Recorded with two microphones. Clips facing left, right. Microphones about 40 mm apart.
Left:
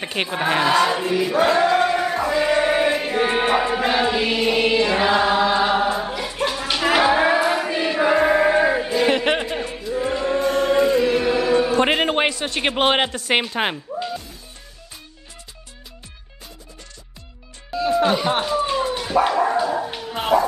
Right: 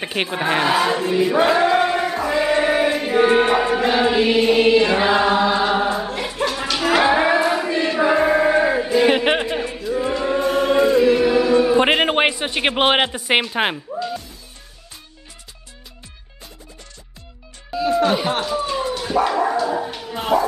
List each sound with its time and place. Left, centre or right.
0.0 s speech: centre
1.3 s a sound: centre
2.2 s chant: centre
6.7 s a sound: centre
7.0 s chant: centre
8.9 s choir: centre
11.7 s a man's voice: centre
17.7 s music: centre
18.3 s a sound: centre
18.9 s dog: centre
20.3 s speech: centre